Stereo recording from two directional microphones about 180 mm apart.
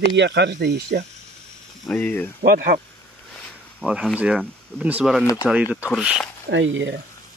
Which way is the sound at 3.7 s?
5° right (ahead or behind).